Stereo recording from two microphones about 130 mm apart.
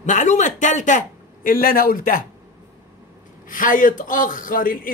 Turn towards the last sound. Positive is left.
turn(degrees=90)